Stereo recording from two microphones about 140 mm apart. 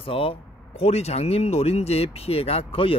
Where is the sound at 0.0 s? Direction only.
40° left (ahead or behind).